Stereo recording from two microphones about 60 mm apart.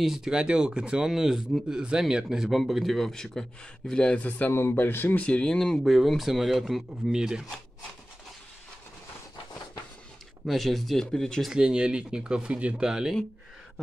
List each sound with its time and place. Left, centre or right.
0.0 s speech: centre
4.5 s speech: left
5.2 s speech: centre
5.9 s speech: centre
10.4 s speech: centre
11.5 s speech: centre